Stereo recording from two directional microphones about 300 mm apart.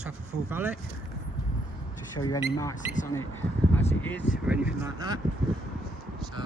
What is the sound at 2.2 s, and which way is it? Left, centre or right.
Speech, centre.